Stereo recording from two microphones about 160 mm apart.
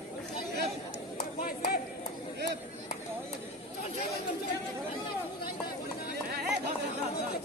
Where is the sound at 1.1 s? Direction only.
75° left (ahead or behind).